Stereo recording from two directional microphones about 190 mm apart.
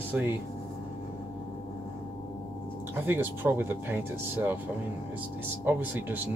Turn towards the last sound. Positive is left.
turn(degrees=-10)  # may be behind; listen again after turning